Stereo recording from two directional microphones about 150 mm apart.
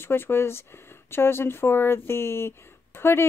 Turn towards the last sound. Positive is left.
turn(degrees=15)  # may be behind; listen again after turning